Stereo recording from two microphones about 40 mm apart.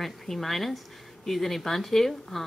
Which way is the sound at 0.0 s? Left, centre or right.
Centre.